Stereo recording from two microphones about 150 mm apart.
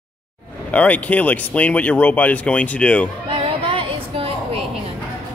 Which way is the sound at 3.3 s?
35° right (ahead or behind).